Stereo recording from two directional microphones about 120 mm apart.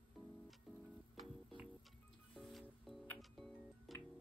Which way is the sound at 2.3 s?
Centre (ahead or behind).